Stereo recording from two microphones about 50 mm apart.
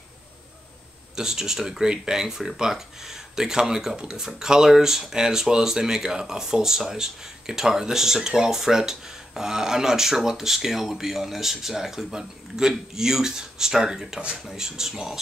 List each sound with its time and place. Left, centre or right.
1.1 s speech: centre